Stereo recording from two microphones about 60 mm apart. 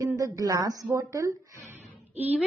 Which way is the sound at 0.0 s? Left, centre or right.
Right.